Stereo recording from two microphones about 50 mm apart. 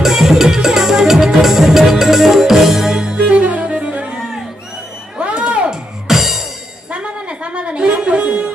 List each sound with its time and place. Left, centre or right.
0.0 s music: centre
3.2 s music: right
5.2 s music: right
5.7 s music: centre
6.9 s music: right